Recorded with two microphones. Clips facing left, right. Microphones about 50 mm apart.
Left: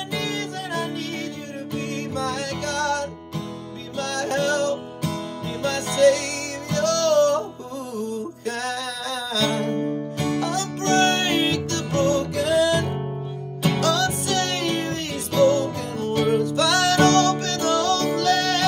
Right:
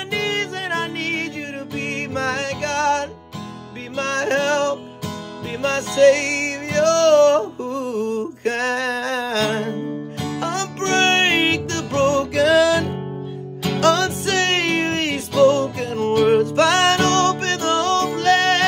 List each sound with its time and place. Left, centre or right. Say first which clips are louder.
0.1 s music: right 6 dB; right
10.1 s music: left 2 dB; centre
10.4 s music: right 2 dB; right
12.4 s music: right 7 dB; right
13.7 s music: right 7 dB; right